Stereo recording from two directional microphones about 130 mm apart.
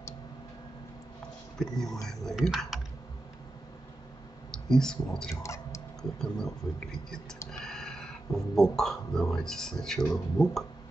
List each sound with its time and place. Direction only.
1.6 s speech: 5° left (ahead or behind)
4.5 s speech: 5° left (ahead or behind)
5.3 s speech: 25° left (ahead or behind)
6.1 s speech: 5° left (ahead or behind)
10.4 s speech: 30° left (ahead or behind)